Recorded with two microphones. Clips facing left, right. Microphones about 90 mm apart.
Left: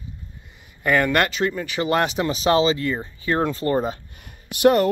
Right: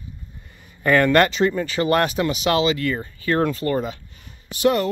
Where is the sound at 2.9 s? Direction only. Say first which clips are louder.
Right 1 dB; 20° left (ahead or behind); by 3.9 s 35° left (ahead or behind).